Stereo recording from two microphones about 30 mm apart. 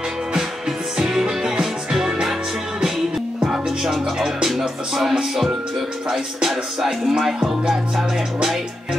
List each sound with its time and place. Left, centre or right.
0.3 s music: centre
3.4 s music: centre
4.6 s music: centre